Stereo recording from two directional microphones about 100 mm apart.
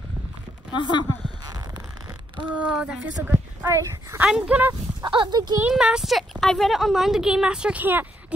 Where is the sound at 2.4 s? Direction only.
10° right (ahead or behind).